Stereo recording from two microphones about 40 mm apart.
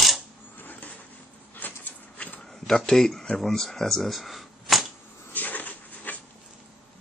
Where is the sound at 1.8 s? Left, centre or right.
Left.